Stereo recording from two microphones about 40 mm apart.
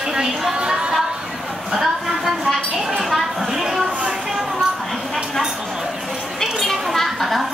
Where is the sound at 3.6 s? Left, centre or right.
Centre.